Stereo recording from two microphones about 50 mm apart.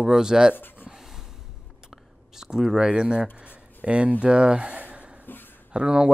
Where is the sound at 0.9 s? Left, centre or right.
Centre.